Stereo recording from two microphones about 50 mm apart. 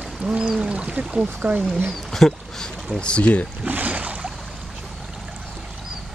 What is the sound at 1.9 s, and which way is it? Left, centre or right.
Speech, centre.